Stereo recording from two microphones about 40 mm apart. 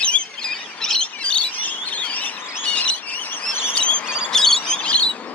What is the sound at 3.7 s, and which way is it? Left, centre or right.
Squeal, left.